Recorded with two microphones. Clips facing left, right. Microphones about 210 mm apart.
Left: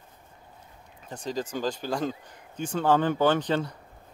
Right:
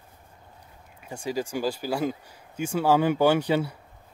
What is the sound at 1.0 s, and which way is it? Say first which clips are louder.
Speech: right 2 dB; 10° right (ahead or behind).